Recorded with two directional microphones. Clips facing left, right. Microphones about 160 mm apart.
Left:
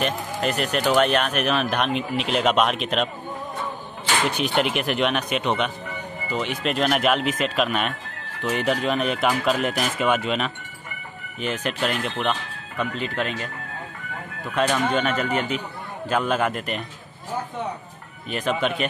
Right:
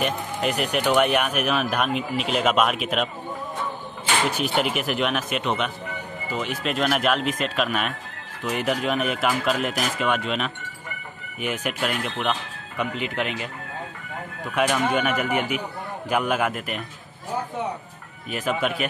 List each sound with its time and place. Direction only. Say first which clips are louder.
0.0 s speech: even; 15° right (ahead or behind)
4.3 s speech: left 1 dB; 5° right (ahead or behind)
11.4 s speech: left 1 dB; 10° right (ahead or behind)
12.7 s speech: even; 15° right (ahead or behind)
18.3 s speech: left 1 dB; 5° right (ahead or behind)